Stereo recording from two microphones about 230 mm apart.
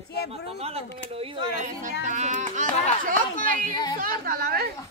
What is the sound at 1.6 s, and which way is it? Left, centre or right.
A child's voice, right.